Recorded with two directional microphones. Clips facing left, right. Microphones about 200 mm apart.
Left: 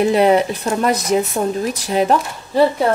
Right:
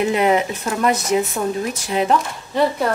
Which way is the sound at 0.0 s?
35° left (ahead or behind).